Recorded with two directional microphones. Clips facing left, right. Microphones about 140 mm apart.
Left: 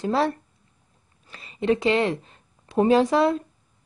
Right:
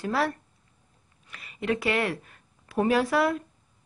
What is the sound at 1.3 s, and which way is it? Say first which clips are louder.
Speech: left 6 dB; 30° left (ahead or behind).